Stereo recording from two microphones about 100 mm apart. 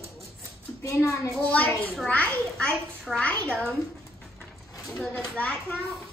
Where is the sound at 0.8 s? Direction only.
30° left (ahead or behind).